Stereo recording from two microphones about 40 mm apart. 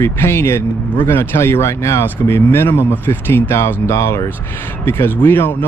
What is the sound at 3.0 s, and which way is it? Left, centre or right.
Speech, left.